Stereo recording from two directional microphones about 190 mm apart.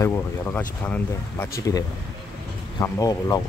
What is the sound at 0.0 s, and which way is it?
Speech, 15° left (ahead or behind).